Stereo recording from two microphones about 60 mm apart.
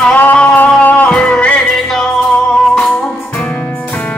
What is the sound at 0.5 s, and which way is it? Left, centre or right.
Music, left.